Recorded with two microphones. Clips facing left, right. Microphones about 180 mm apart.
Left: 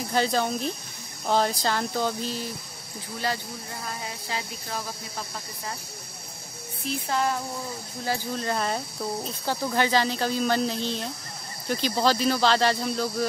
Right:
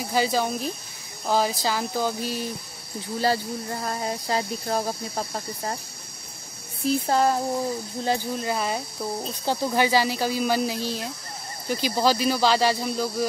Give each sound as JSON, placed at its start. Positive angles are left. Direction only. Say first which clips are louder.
{"t": 0.1, "sound": "speech", "louder": "right 1 dB", "side_deg": -5}
{"t": 3.2, "sound": "speech", "louder": "right 6 dB", "side_deg": -40}
{"t": 6.9, "sound": "speech", "louder": "right 5 dB", "side_deg": -40}
{"t": 8.4, "sound": "speech", "louder": "right 1 dB", "side_deg": -10}
{"t": 9.2, "sound": "speech", "louder": "right 3 dB", "side_deg": -20}